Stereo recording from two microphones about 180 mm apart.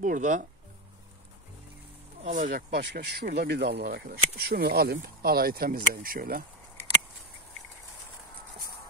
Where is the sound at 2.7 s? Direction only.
65° right (ahead or behind).